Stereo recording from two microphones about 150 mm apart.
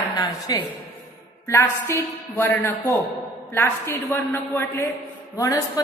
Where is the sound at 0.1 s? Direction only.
25° left (ahead or behind).